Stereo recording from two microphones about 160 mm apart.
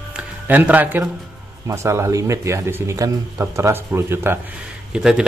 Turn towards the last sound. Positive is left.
turn(degrees=-5)  # may be behind; listen again after turning